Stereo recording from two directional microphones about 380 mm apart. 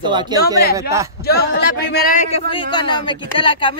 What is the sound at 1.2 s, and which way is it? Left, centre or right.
A man's voice, left.